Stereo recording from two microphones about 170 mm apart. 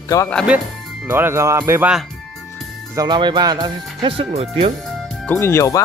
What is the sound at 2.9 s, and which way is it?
Speech, 25° right (ahead or behind).